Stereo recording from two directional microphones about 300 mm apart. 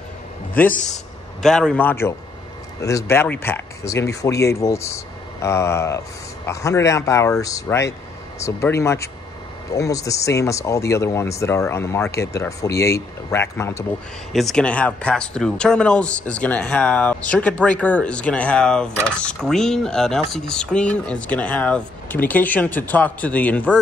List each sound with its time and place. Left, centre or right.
0.6 s speech: centre